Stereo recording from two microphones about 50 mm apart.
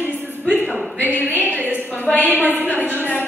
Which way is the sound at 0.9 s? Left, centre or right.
Right.